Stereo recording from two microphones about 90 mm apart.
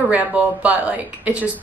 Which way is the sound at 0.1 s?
15° right (ahead or behind).